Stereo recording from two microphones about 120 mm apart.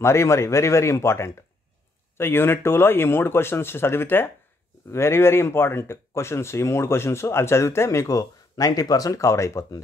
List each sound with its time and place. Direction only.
0.0 s speech: 25° left (ahead or behind)